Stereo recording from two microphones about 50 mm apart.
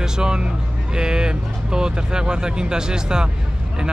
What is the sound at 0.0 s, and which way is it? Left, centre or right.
Speech, centre.